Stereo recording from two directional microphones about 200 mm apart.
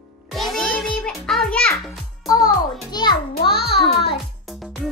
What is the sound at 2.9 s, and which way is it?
Music, 20° left (ahead or behind).